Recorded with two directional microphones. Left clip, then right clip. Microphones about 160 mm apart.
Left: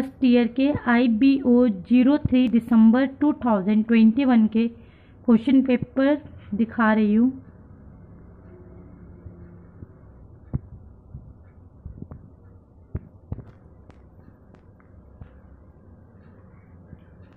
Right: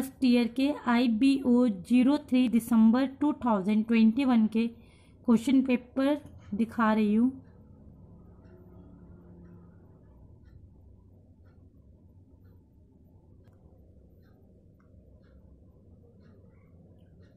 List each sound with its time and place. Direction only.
0.0 s speech: 20° right (ahead or behind)